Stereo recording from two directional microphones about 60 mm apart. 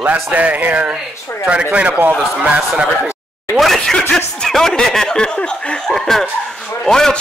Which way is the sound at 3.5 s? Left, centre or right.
Centre.